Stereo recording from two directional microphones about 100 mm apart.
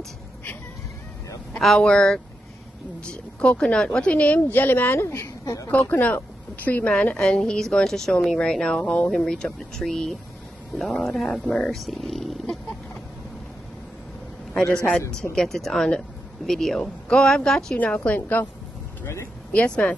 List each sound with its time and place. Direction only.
1.6 s a woman's voice: 5° left (ahead or behind); by 5.7 s 30° left (ahead or behind)
5.7 s a woman's voice: 15° left (ahead or behind)
14.5 s a man's voice: 5° left (ahead or behind)
19.5 s a woman's voice: 10° left (ahead or behind)